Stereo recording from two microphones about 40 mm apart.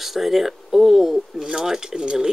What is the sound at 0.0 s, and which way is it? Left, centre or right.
Speech, centre.